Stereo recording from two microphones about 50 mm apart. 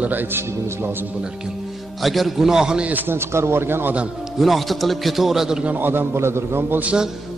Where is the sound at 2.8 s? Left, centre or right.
Right.